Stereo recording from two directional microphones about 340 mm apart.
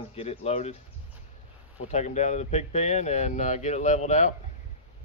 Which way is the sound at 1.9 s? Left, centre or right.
Centre.